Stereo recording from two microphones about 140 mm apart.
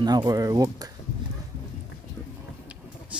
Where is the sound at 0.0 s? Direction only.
30° right (ahead or behind).